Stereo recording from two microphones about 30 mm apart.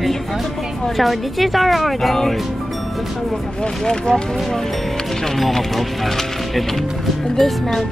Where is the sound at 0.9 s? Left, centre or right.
Centre.